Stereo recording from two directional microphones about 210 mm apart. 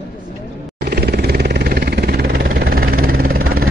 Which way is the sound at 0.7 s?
50° right (ahead or behind).